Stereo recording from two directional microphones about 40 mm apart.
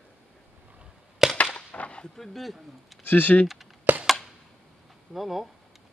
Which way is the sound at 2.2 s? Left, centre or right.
Centre.